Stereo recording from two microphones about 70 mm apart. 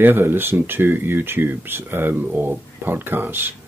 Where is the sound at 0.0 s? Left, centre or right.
Right.